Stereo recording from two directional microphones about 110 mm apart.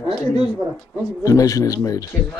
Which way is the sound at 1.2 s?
30° left (ahead or behind).